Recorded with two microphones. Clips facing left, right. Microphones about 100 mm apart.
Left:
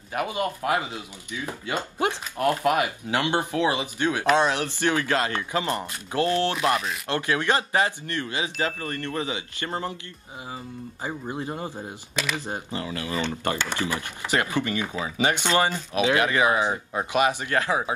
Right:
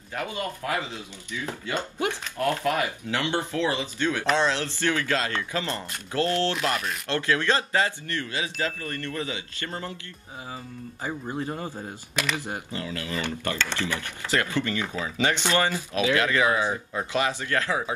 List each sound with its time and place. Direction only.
0.1 s speech: 20° left (ahead or behind)
5.5 s chime: 20° left (ahead or behind)
11.1 s speech: 15° left (ahead or behind)
12.4 s chime: 20° left (ahead or behind)
13.6 s speech: 15° left (ahead or behind)
15.9 s chime: 20° left (ahead or behind)